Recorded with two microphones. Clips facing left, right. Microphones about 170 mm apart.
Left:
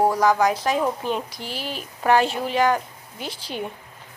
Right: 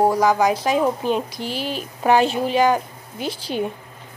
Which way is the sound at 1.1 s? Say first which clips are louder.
Right 5 dB; 25° right (ahead or behind).